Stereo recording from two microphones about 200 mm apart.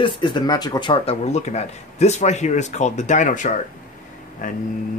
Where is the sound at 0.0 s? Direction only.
25° left (ahead or behind).